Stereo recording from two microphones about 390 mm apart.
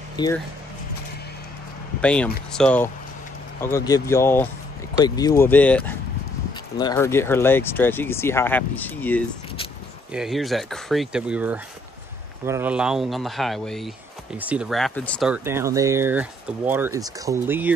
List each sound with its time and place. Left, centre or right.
0.1 s speech: centre
2.0 s speech: centre